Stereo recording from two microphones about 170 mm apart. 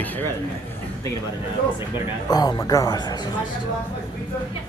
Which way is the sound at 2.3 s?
25° left (ahead or behind).